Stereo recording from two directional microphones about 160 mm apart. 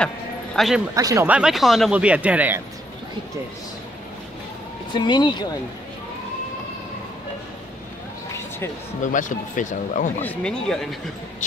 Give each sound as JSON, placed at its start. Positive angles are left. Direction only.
{"t": 0.6, "sound": "speech", "side_deg": 0}
{"t": 0.9, "sound": "speech", "side_deg": -20}
{"t": 1.2, "sound": "speech", "side_deg": -5}
{"t": 4.9, "sound": "speech", "side_deg": 30}
{"t": 9.0, "sound": "speech", "side_deg": 50}
{"t": 10.2, "sound": "speech", "side_deg": 5}